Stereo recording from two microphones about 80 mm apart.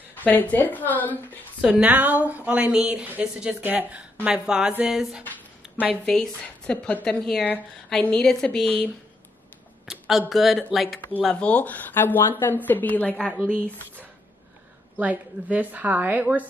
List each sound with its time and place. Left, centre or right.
0.1 s speech: left
1.6 s a woman's voice: centre
6.0 s speech: centre
9.8 s a sound: centre
10.3 s speech: centre
11.2 s speech: centre
13.1 s a woman's voice: centre
13.7 s speech: centre
15.0 s a woman's voice: centre